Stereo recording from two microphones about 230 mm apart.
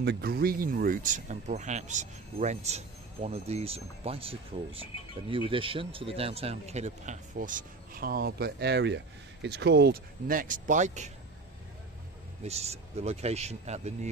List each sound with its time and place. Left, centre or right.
0.0 s speech: right
12.4 s speech: right